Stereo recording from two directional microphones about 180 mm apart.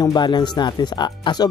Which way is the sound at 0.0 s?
25° left (ahead or behind).